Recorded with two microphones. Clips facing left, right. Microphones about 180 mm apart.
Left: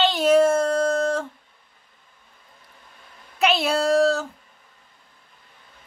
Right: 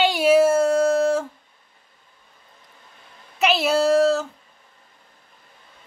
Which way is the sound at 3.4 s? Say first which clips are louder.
Right 2 dB; centre (ahead or behind).